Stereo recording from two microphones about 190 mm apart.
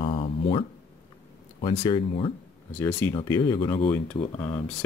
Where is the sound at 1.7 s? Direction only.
20° left (ahead or behind).